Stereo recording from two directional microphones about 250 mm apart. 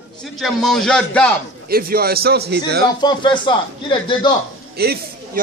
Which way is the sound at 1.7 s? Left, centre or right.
Right.